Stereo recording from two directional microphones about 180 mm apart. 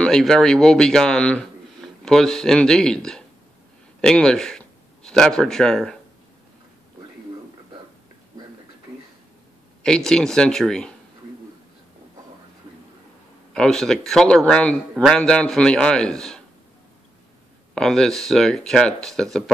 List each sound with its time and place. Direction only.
0.0 s a man's voice: 5° left (ahead or behind)
9.8 s a man's voice: 5° left (ahead or behind)
13.5 s a man's voice: 5° left (ahead or behind)
17.7 s a man's voice: 5° left (ahead or behind)